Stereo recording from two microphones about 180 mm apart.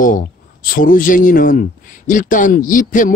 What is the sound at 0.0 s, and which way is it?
Speech, 50° left (ahead or behind).